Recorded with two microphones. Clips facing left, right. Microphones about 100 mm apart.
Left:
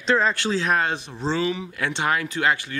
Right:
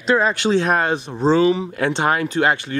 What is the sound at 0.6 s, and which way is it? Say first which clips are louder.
Speech: right 4 dB; 45° right (ahead or behind).